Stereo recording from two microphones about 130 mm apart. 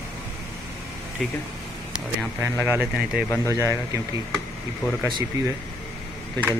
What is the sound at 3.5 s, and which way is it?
Speech, 25° right (ahead or behind).